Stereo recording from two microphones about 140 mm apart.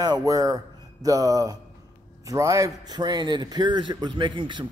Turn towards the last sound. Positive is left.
turn(degrees=-35)  # may be behind; listen again after turning